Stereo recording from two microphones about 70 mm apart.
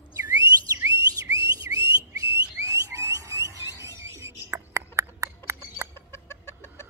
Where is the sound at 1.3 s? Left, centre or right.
Right.